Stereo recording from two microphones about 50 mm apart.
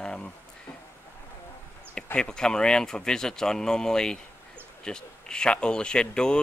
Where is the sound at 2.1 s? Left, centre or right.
Centre.